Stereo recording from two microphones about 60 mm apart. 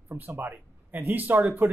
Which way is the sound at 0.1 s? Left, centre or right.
Right.